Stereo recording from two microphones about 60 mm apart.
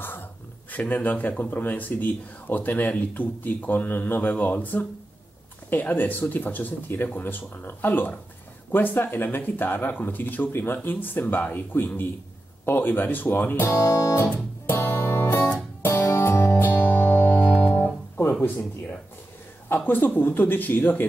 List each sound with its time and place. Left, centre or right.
0.0 s speech: left
13.7 s speech: left
14.2 s music: left
15.2 s music: left
15.8 s music: left
16.1 s music: left
16.5 s guitar: left
19.7 s speech: left